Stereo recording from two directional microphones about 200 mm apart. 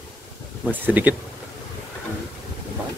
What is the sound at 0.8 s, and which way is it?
Speech, 10° right (ahead or behind).